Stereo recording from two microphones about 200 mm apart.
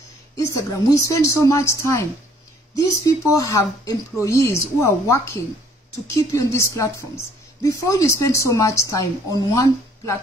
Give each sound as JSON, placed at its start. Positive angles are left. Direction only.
{"t": 0.4, "sound": "a woman's voice", "side_deg": 15}
{"t": 3.1, "sound": "a woman's voice", "side_deg": 15}